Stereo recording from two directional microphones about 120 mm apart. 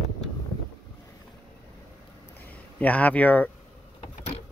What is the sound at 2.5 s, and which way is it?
Speech, 10° left (ahead or behind).